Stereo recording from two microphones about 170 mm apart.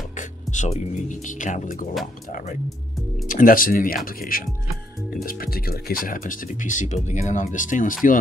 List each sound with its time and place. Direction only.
0.1 s speech: 45° left (ahead or behind)
3.3 s speech: 55° left (ahead or behind)